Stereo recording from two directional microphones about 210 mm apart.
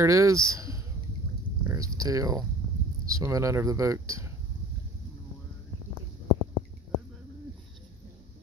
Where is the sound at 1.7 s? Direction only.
15° right (ahead or behind).